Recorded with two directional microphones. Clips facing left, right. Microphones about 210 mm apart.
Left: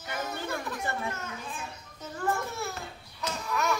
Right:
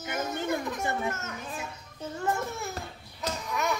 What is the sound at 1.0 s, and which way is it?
Speech, 45° right (ahead or behind).